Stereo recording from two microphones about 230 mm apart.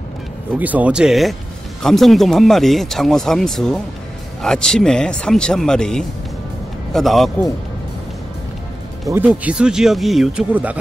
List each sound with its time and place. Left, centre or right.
0.6 s a man's voice: centre
9.1 s speech: centre